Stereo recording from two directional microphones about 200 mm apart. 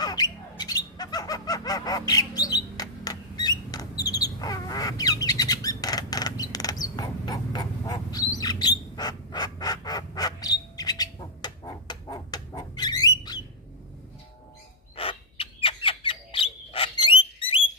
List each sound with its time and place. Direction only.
0.0 s bird: 20° left (ahead or behind)
2.8 s a sound: 20° left (ahead or behind)
4.0 s bird: 20° left (ahead or behind)
15.0 s bird: 25° left (ahead or behind)